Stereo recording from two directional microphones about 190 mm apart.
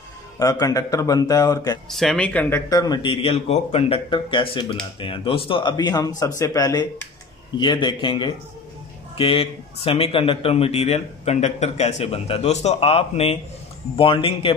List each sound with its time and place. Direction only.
0.4 s speech: 20° left (ahead or behind)
1.9 s a man's voice: centre (ahead or behind); by 14.5 s 30° left (ahead or behind)